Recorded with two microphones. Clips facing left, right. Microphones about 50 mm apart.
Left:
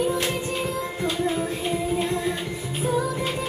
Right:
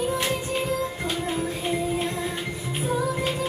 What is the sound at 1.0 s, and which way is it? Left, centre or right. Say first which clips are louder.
Music: left 3 dB; right.